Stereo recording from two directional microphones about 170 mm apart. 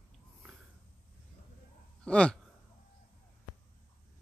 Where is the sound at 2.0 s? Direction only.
5° left (ahead or behind).